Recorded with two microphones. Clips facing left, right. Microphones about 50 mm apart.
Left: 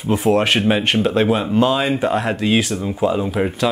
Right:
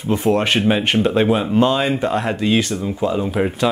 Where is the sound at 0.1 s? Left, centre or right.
Centre.